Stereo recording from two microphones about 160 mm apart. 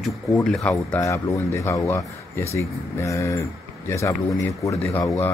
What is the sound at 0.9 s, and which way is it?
Speech, 20° left (ahead or behind).